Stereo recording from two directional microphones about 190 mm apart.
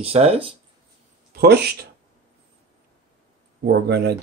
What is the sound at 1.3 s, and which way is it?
Speech, 55° right (ahead or behind).